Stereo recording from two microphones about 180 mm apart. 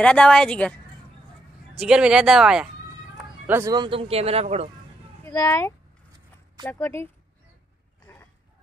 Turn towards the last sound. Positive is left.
turn(degrees=15)  # may be behind; listen again after turning